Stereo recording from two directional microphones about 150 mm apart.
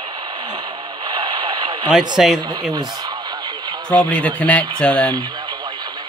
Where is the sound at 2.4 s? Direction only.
25° right (ahead or behind).